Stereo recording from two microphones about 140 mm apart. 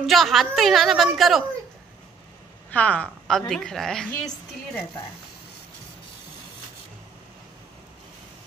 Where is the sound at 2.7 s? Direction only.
10° left (ahead or behind).